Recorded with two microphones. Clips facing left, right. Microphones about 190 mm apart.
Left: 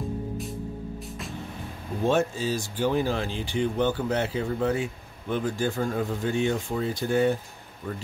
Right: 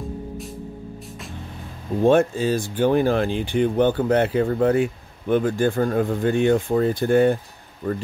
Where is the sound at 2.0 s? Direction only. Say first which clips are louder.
Right 7 dB; 55° right (ahead or behind).